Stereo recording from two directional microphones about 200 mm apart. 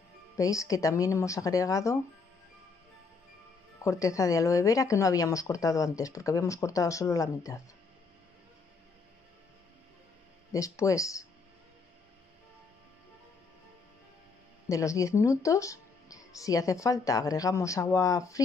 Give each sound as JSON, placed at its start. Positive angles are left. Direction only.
{"t": 0.4, "sound": "speech", "side_deg": 15}
{"t": 3.8, "sound": "speech", "side_deg": 15}
{"t": 10.5, "sound": "speech", "side_deg": 15}
{"t": 14.7, "sound": "speech", "side_deg": 15}